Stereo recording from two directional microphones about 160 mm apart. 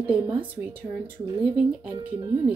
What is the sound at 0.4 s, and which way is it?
Speech, 10° right (ahead or behind).